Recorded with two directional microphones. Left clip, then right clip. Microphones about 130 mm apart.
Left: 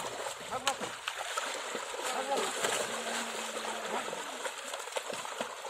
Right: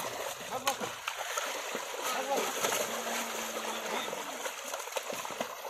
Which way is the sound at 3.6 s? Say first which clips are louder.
Even; centre (ahead or behind).